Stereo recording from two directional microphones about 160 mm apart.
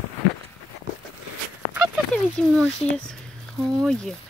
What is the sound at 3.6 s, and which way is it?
Speech, centre (ahead or behind).